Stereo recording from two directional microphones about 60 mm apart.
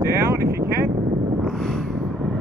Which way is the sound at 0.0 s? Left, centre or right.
Right.